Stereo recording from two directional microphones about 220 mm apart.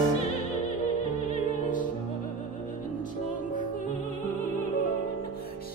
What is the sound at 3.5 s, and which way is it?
Music, 35° left (ahead or behind).